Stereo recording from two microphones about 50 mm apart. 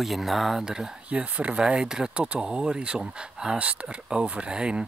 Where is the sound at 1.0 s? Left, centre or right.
Right.